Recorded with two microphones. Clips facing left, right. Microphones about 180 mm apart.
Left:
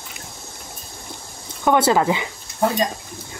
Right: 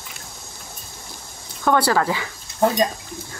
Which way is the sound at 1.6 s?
20° left (ahead or behind).